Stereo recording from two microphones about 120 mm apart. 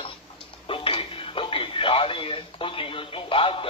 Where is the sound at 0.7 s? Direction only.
50° left (ahead or behind).